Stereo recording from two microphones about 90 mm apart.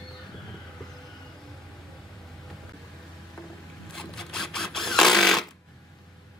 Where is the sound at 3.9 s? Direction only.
5° left (ahead or behind).